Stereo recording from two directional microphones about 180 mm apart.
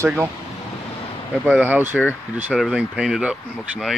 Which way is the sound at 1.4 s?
10° right (ahead or behind).